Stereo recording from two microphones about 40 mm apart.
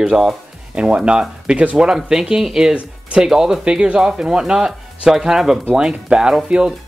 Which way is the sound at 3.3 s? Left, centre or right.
Centre.